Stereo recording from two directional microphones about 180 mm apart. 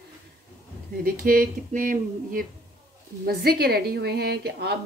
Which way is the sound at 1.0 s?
50° right (ahead or behind).